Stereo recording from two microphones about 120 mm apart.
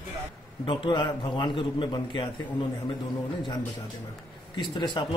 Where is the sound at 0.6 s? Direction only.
40° left (ahead or behind).